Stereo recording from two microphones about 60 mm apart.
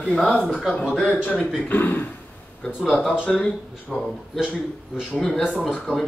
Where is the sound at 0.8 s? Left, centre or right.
Centre.